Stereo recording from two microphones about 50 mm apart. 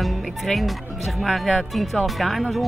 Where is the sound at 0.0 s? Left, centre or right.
Centre.